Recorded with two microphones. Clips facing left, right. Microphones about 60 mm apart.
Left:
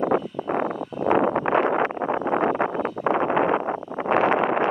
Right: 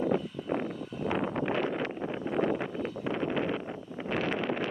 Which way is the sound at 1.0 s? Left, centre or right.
Left.